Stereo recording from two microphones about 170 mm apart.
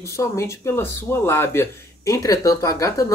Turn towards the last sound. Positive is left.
turn(degrees=20)  # may be behind; listen again after turning